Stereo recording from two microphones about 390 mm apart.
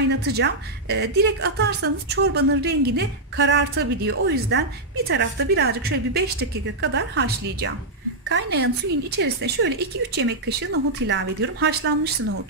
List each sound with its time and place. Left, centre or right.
0.1 s a woman's voice: right